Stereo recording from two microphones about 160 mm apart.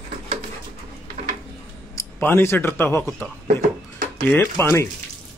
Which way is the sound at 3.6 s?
60° right (ahead or behind).